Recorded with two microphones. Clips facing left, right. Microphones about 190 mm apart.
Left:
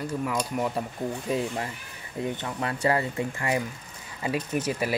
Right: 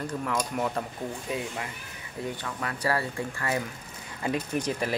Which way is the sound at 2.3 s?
25° left (ahead or behind).